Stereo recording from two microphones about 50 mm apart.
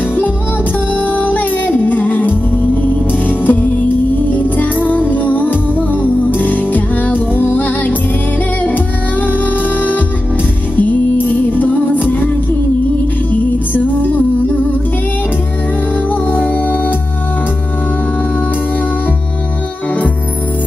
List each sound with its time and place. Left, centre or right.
0.9 s music: left
13.3 s music: left
16.1 s music: left